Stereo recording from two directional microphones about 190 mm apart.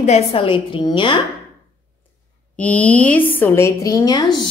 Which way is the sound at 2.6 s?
5° left (ahead or behind).